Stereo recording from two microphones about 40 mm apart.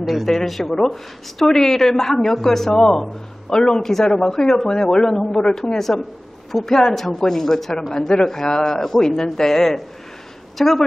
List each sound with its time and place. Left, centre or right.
0.0 s speech: centre
0.3 s speech: centre